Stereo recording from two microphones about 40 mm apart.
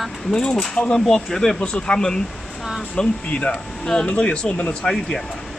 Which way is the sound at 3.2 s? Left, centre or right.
Left.